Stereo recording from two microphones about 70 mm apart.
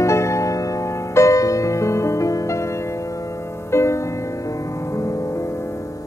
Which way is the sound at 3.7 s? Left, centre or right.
Left.